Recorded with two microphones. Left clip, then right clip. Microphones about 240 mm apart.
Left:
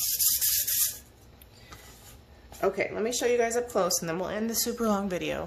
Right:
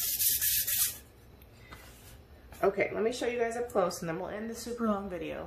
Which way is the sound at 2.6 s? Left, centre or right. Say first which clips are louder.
Left 1 dB; left.